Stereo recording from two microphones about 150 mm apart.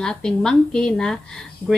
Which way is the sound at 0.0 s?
5° left (ahead or behind).